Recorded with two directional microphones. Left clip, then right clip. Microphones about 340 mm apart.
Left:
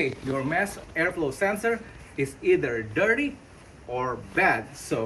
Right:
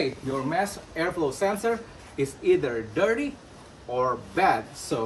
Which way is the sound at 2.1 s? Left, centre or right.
Centre.